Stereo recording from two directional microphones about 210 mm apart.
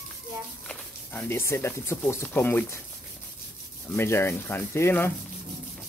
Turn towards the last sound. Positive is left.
turn(degrees=10)  # may be behind; listen again after turning